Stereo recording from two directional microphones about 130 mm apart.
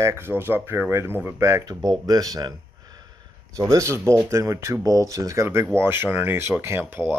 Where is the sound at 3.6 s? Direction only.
25° right (ahead or behind).